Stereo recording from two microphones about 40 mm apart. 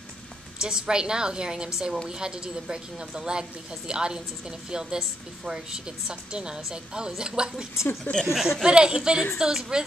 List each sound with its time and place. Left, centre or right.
0.6 s a woman's voice: centre
8.0 s speech: centre
8.3 s a woman's voice: centre
8.6 s a woman's voice: right